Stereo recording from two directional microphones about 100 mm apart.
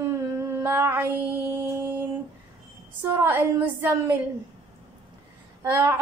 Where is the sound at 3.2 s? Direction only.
20° right (ahead or behind).